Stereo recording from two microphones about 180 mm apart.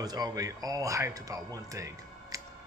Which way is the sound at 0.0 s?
20° right (ahead or behind).